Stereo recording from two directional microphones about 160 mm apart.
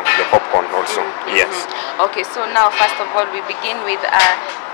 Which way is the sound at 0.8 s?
10° left (ahead or behind).